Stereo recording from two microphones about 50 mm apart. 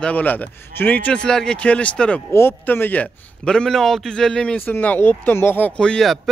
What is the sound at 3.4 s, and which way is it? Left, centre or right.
Speech, centre.